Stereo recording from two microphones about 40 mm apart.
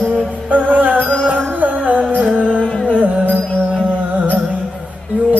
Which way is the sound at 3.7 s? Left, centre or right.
Left.